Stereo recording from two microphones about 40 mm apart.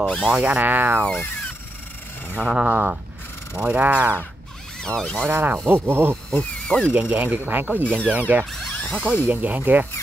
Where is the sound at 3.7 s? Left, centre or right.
Right.